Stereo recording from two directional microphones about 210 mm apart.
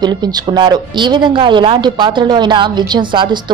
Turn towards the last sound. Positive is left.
turn(degrees=-20)  # may be behind; listen again after turning